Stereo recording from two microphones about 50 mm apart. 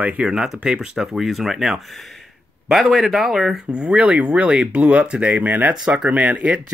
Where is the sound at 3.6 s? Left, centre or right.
Centre.